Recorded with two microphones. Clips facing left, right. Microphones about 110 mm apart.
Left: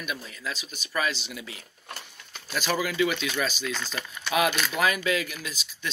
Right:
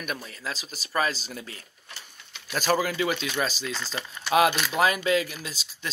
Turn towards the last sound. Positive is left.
turn(degrees=-30)  # may be behind; listen again after turning